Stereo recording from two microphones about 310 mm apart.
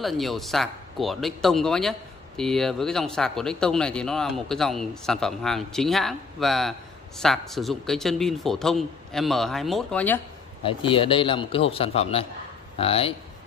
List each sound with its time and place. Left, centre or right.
0.0 s speech: centre
10.6 s a man's voice: centre